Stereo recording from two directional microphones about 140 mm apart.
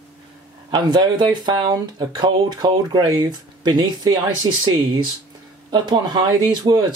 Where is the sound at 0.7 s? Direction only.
30° right (ahead or behind).